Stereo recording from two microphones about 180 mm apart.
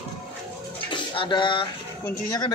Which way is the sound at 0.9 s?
25° left (ahead or behind).